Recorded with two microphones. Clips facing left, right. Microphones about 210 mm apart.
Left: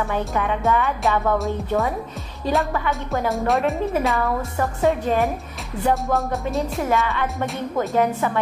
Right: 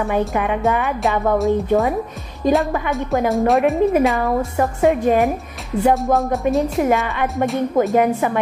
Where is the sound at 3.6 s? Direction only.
15° right (ahead or behind).